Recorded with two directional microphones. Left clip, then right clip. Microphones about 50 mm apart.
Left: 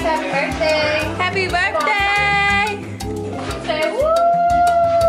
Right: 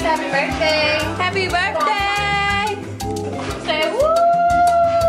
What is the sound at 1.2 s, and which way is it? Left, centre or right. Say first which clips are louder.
Speech: left 2 dB; centre.